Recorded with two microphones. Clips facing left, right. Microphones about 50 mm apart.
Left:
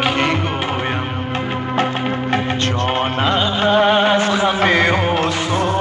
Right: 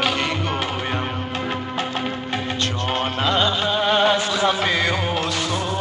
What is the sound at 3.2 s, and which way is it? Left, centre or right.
Music, left.